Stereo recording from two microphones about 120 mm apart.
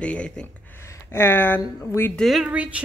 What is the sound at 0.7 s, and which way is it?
Speech, 20° left (ahead or behind).